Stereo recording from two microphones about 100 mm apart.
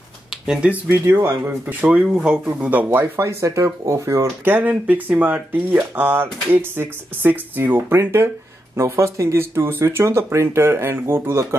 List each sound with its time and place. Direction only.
0.3 s a sound: 10° right (ahead or behind)
0.8 s speech: 25° right (ahead or behind)
4.6 s speech: 15° right (ahead or behind)